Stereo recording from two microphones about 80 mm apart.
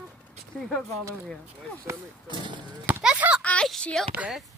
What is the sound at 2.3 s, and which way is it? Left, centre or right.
Speech, right.